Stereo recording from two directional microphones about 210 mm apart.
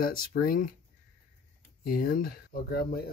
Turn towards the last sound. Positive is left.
turn(degrees=50)  # may be behind; listen again after turning